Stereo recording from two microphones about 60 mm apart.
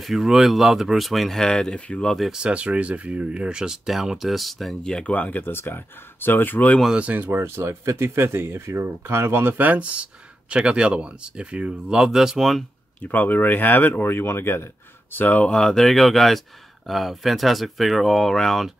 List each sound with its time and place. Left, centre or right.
0.0 s speech: centre
2.3 s speech: centre
4.9 s speech: left
6.9 s speech: right
7.2 s speech: right; by 12.6 s centre
13.1 s speech: left
15.1 s speech: left
15.5 s speech: centre